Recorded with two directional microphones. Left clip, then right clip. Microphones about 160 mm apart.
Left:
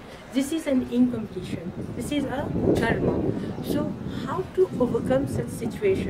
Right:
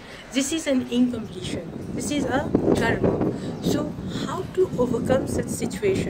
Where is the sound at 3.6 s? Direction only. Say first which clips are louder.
Right 3 dB; 25° left (ahead or behind).